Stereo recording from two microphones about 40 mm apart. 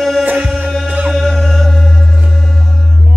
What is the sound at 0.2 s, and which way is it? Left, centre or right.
Music, right.